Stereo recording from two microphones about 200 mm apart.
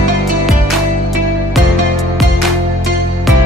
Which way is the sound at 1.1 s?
Centre (ahead or behind).